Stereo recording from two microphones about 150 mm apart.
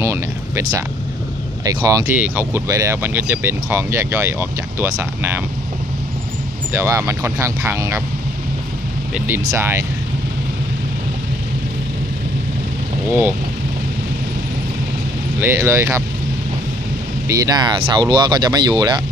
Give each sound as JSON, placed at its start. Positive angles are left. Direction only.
{"t": 0.0, "sound": "a sound", "side_deg": -20}
{"t": 1.6, "sound": "speech", "side_deg": -25}
{"t": 2.0, "sound": "speech", "side_deg": -10}
{"t": 6.7, "sound": "speech", "side_deg": -20}
{"t": 9.3, "sound": "speech", "side_deg": -20}
{"t": 15.4, "sound": "speech", "side_deg": -15}
{"t": 17.3, "sound": "speech", "side_deg": -25}